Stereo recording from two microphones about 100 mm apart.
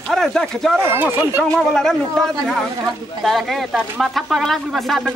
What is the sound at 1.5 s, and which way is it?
A woman's voice, 5° left (ahead or behind).